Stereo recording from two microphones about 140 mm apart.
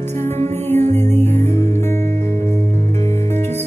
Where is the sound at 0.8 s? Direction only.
55° right (ahead or behind).